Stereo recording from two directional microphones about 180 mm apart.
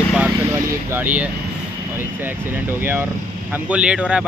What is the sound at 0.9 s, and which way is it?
Speech, 10° right (ahead or behind).